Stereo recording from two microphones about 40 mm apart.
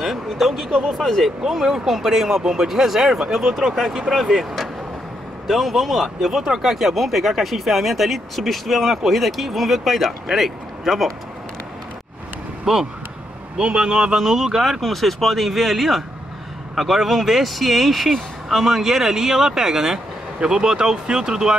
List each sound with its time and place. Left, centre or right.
0.0 s speech: centre
2.4 s speech: centre
5.5 s speech: centre
12.7 s speech: centre
13.6 s a man's voice: right
14.2 s speech: centre